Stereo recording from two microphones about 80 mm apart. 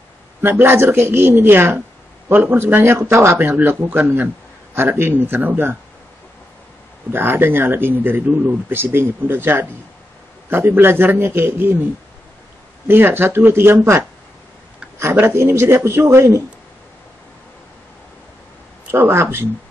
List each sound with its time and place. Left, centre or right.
0.4 s speech: right
7.1 s speech: right
15.0 s a man's voice: right
18.9 s speech: right